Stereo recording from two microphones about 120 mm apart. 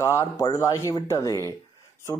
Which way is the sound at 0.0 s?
25° left (ahead or behind).